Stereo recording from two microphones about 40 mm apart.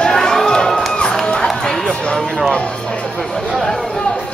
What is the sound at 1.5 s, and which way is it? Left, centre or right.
Run, centre.